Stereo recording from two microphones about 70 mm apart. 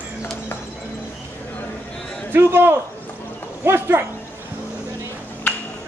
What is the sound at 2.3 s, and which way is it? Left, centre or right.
A man's voice, right.